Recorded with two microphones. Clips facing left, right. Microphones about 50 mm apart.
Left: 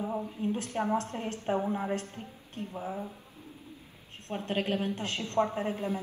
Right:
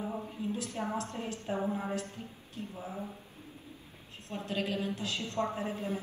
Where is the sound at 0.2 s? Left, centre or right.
Left.